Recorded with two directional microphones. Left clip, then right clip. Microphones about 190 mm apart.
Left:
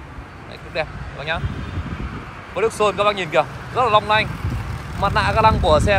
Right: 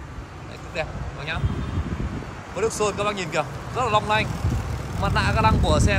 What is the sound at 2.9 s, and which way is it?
Speech, 5° right (ahead or behind).